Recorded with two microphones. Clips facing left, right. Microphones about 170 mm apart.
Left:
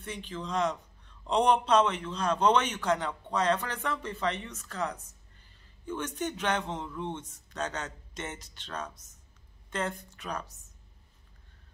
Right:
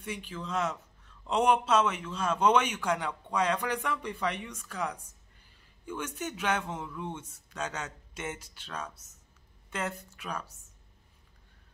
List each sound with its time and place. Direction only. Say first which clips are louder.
0.0 s a man's voice: even; 10° right (ahead or behind)